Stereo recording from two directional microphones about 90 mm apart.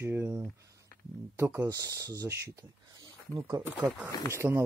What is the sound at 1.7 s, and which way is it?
Speech, 40° right (ahead or behind).